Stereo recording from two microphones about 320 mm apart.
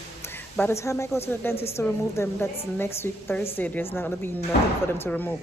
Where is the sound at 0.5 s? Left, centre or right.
Centre.